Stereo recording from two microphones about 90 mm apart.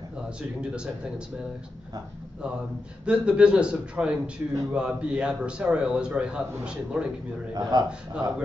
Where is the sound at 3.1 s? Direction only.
10° right (ahead or behind).